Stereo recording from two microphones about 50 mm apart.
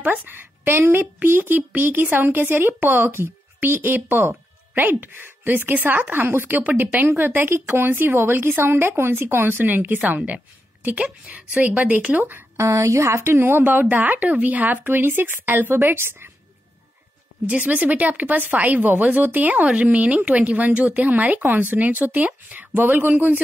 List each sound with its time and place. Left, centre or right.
0.0 s speech: right
0.7 s a woman's voice: right
3.6 s a woman's voice: right
12.5 s a woman's voice: right
17.6 s speech: right